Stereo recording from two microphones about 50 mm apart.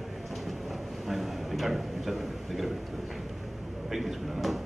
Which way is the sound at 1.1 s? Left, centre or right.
Centre.